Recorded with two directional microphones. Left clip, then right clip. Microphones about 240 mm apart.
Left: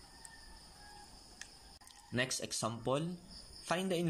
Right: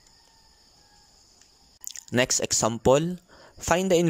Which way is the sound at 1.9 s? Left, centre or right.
Right.